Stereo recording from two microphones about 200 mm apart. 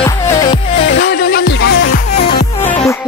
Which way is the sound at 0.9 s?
50° left (ahead or behind).